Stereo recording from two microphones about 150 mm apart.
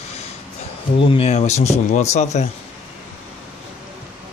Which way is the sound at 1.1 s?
45° left (ahead or behind).